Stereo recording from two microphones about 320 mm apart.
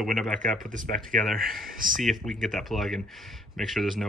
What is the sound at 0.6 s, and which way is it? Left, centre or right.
Speech, right.